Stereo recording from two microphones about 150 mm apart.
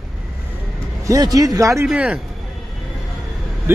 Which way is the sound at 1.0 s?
25° right (ahead or behind).